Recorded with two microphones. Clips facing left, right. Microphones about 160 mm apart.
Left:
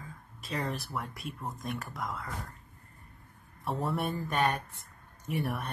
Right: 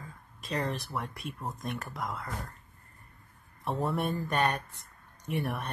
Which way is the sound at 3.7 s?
Centre (ahead or behind).